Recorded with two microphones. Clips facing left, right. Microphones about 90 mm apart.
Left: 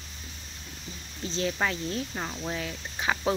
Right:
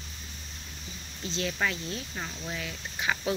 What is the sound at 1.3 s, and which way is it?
Speech, 35° left (ahead or behind).